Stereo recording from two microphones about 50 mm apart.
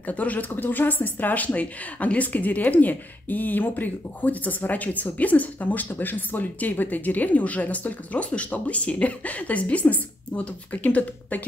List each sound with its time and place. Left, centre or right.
0.0 s speech: left